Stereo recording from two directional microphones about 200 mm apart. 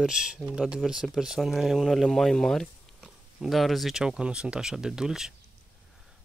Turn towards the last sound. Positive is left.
turn(degrees=-5)  # may be behind; listen again after turning